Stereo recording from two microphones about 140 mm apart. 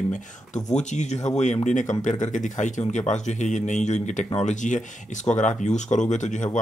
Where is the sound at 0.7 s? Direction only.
55° left (ahead or behind).